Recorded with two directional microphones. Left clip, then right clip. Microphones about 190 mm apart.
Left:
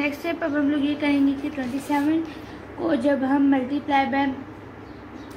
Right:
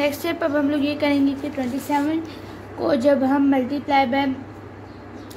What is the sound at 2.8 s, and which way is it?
A woman's voice, 50° right (ahead or behind).